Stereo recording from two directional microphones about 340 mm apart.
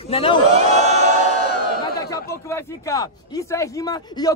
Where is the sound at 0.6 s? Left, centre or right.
Centre.